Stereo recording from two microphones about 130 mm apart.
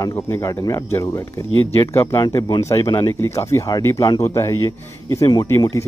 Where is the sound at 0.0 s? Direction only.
25° left (ahead or behind).